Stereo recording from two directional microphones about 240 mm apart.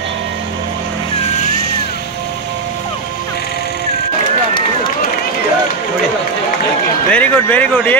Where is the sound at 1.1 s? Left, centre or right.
Left.